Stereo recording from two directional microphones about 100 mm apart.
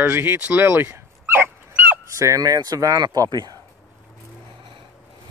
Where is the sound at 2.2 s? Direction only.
35° right (ahead or behind).